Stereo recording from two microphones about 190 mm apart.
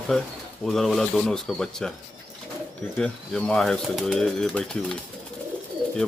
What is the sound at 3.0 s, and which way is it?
Speech, 5° left (ahead or behind).